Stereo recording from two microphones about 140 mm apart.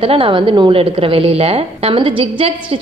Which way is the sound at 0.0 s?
40° right (ahead or behind).